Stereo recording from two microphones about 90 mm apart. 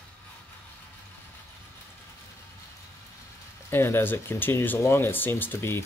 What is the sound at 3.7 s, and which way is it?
Speech, 25° left (ahead or behind).